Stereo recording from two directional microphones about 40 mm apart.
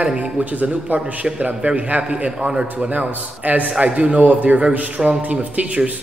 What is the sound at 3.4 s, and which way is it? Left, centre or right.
Speech, right.